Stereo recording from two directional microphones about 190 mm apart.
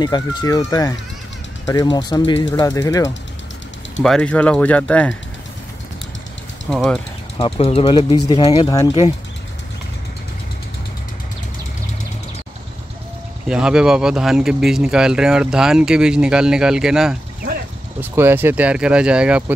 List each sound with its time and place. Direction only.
0.0 s speech: 20° left (ahead or behind)
4.0 s speech: 5° left (ahead or behind)
6.7 s speech: centre (ahead or behind)
7.3 s speech: 30° left (ahead or behind)
13.5 s speech: 5° right (ahead or behind)